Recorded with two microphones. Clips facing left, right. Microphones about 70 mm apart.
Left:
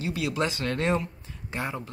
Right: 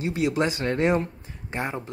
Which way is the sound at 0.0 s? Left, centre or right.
Right.